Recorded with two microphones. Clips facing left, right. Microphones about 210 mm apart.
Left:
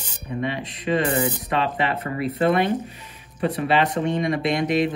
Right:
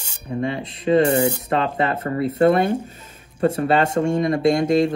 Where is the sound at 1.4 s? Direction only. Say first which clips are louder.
Right 3 dB; 25° right (ahead or behind).